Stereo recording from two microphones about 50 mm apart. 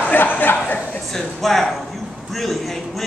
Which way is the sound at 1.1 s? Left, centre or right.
Centre.